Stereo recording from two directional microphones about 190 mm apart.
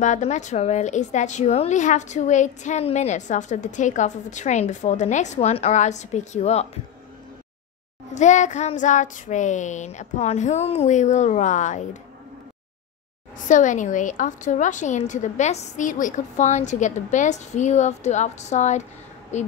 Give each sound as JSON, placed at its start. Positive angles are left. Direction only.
{"t": 0.0, "sound": "a woman's voice", "side_deg": 40}
{"t": 8.1, "sound": "a woman's voice", "side_deg": 40}
{"t": 13.5, "sound": "a woman's voice", "side_deg": 40}